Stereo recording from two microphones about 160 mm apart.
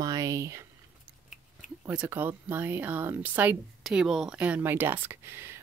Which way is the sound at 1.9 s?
10° right (ahead or behind).